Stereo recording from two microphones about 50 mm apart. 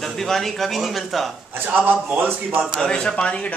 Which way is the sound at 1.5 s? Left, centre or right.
Right.